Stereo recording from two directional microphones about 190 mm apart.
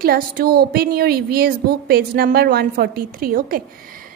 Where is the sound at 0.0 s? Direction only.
50° right (ahead or behind).